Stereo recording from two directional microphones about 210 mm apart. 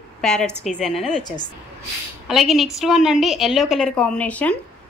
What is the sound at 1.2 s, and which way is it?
Speech, 20° left (ahead or behind).